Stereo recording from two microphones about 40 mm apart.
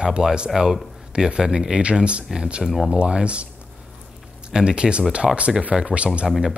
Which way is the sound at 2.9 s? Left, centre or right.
Right.